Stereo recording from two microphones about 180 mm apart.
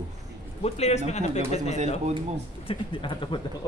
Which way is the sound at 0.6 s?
35° left (ahead or behind).